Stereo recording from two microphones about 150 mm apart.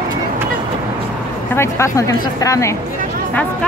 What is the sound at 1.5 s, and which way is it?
Speech, 20° left (ahead or behind).